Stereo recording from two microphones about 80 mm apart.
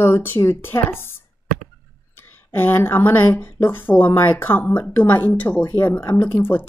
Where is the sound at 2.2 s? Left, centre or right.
Left.